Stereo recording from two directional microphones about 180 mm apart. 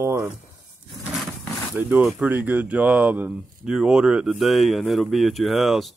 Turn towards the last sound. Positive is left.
turn(degrees=0)  # may be behind; listen again after turning